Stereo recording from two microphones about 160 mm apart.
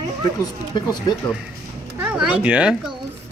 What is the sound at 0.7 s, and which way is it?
Speech, 30° left (ahead or behind).